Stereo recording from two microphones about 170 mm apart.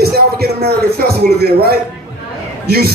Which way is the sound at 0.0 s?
65° right (ahead or behind).